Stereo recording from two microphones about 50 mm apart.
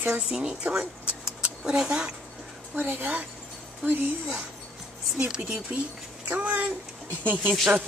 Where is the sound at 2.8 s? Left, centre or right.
Right.